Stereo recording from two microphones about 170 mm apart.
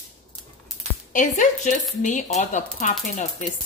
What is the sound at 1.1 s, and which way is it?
Chopping, 45° left (ahead or behind).